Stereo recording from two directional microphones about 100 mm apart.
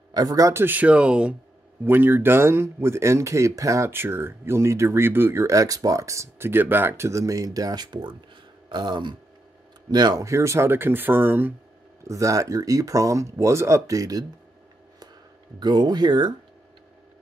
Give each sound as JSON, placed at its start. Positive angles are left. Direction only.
{"t": 0.1, "sound": "speech", "side_deg": -40}
{"t": 0.5, "sound": "speech", "side_deg": -20}
{"t": 1.9, "sound": "speech", "side_deg": -20}
{"t": 12.0, "sound": "speech", "side_deg": -30}
{"t": 15.6, "sound": "speech", "side_deg": -45}